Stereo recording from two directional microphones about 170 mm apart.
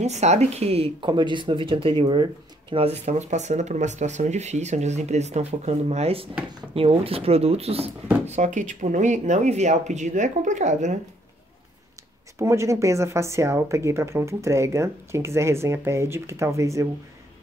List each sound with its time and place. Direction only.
0.0 s speech: 40° right (ahead or behind)
12.4 s speech: 15° right (ahead or behind)